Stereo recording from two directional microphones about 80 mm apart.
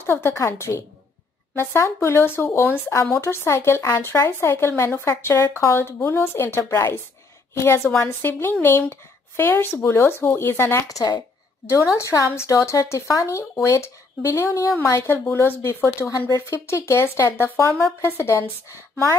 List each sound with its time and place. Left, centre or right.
0.0 s speech: left
11.9 s speech: left